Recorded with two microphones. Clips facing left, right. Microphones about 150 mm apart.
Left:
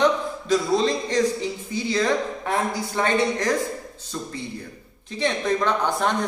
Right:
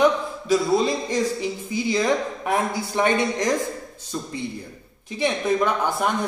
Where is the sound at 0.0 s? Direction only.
10° right (ahead or behind).